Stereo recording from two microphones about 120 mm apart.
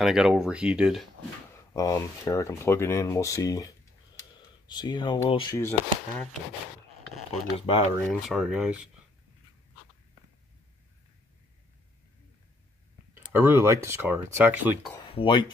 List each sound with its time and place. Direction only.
0.0 s speech: 5° right (ahead or behind)
1.7 s speech: 25° left (ahead or behind)
4.2 s a sound: 35° left (ahead or behind)
5.5 s speech: 20° left (ahead or behind)
7.2 s speech: 60° left (ahead or behind)
8.1 s speech: centre (ahead or behind)
13.1 s speech: 20° right (ahead or behind)
15.0 s speech: 45° left (ahead or behind)